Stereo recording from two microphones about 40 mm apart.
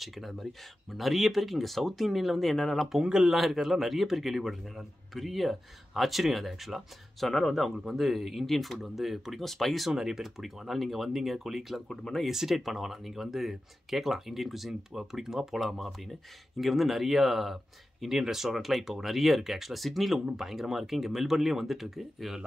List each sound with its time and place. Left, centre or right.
0.0 s a man's voice: centre
3.0 s speech: centre
3.3 s a man's voice: centre
9.4 s speech: centre
9.8 s speech: centre
11.9 s speech: centre
12.2 s a man's voice: centre